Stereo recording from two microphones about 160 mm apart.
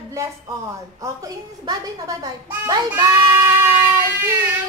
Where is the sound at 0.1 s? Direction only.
20° right (ahead or behind).